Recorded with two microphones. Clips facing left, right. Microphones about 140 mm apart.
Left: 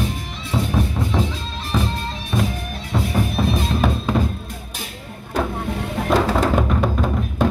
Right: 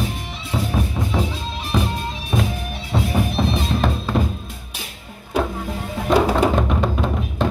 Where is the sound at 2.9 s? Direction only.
Centre (ahead or behind).